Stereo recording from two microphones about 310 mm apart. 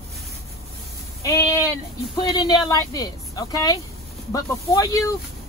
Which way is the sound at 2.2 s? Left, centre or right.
Centre.